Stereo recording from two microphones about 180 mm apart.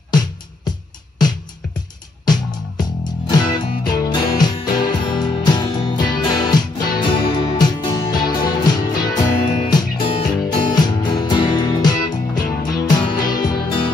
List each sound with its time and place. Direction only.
0.7 s music: 20° left (ahead or behind)